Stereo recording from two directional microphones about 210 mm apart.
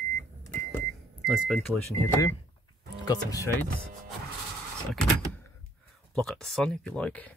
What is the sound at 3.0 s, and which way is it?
Speech, 15° left (ahead or behind).